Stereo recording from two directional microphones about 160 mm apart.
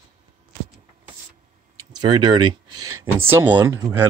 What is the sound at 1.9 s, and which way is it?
Speech, 30° right (ahead or behind).